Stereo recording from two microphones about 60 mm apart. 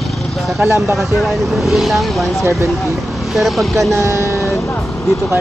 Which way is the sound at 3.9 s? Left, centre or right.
Right.